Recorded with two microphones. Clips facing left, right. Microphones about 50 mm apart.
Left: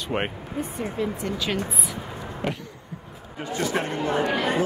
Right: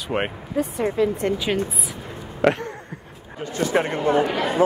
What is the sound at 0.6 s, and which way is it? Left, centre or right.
Speech, right.